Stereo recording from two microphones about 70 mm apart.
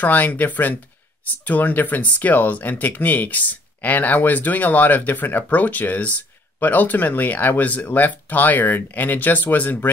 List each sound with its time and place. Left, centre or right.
0.0 s speech: left